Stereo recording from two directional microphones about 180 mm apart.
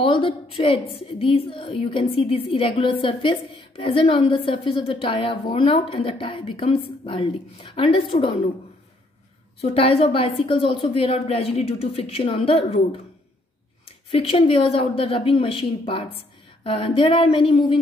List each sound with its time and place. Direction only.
0.0 s a woman's voice: 30° left (ahead or behind)
9.6 s a woman's voice: 30° left (ahead or behind)
13.8 s a woman's voice: 30° left (ahead or behind)